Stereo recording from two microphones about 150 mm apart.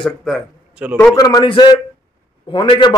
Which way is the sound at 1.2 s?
25° left (ahead or behind).